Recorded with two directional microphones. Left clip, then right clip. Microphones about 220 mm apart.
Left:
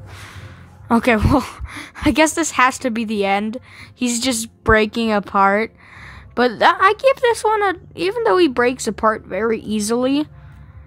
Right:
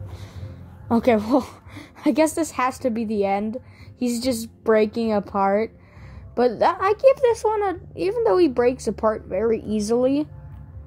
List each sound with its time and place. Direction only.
0.8 s speech: 30° left (ahead or behind)